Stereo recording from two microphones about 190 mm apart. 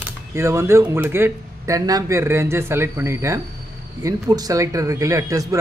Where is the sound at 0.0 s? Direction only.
15° right (ahead or behind).